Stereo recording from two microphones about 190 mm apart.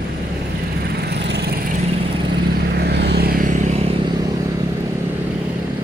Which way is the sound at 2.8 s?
60° right (ahead or behind).